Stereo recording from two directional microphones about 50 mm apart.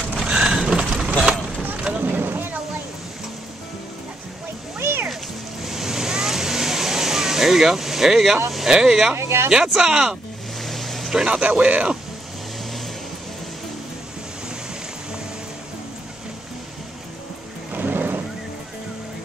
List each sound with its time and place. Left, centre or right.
0.2 s vehicle: centre
1.3 s vehicle: right
1.8 s vehicle: right
2.0 s vehicle: right
4.7 s music: right
5.6 s vehicle: centre
8.6 s speech: centre
9.1 s speech: right
9.5 s speech: centre
10.6 s a sound: centre
11.1 s speech: centre
17.7 s boat: right